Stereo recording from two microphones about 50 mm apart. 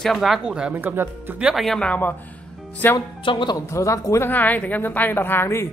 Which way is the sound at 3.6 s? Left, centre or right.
Left.